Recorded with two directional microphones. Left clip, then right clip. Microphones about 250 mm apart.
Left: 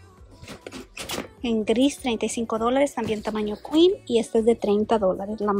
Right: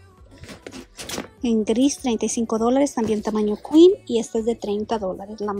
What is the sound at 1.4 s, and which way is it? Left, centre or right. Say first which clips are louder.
A woman's voice: right 2 dB; centre.